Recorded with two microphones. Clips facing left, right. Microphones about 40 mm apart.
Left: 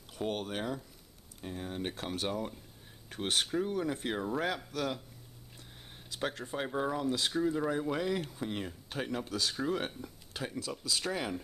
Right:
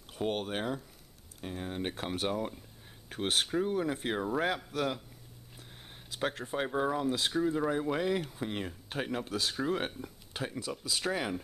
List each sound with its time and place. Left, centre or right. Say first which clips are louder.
0.1 s speech: right 2 dB; centre
6.0 s speech: right 2 dB; centre